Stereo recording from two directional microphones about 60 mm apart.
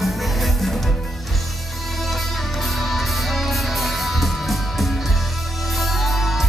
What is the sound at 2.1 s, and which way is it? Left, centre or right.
Music, centre.